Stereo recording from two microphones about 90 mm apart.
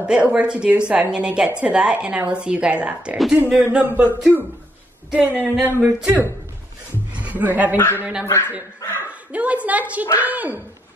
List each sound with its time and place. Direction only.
0.0 s a woman's voice: 10° right (ahead or behind)
7.7 s speech: 25° left (ahead or behind)
8.8 s a sound: 25° left (ahead or behind)
9.3 s speech: 15° right (ahead or behind)